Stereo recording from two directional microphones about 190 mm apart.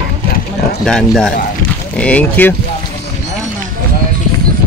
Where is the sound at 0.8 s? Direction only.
Centre (ahead or behind).